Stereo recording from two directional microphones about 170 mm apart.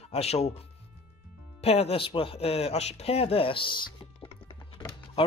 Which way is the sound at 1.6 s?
35° left (ahead or behind).